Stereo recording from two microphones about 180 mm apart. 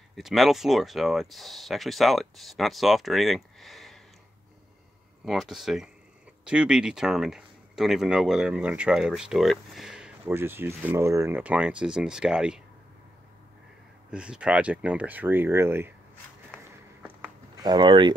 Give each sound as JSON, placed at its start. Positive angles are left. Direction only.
{"t": 0.1, "sound": "speech", "side_deg": 0}
{"t": 5.2, "sound": "speech", "side_deg": 0}
{"t": 14.1, "sound": "speech", "side_deg": -5}
{"t": 16.6, "sound": "a sound", "side_deg": -10}
{"t": 17.6, "sound": "speech", "side_deg": -25}